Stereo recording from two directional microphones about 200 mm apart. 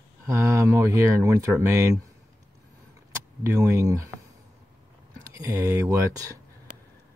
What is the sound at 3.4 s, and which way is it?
Speech, 15° right (ahead or behind).